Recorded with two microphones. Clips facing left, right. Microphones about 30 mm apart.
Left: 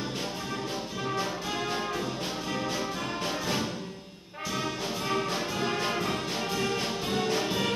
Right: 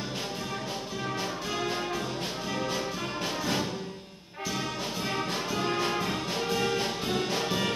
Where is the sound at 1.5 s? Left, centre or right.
Centre.